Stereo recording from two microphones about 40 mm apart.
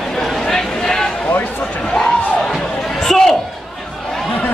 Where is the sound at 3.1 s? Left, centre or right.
Centre.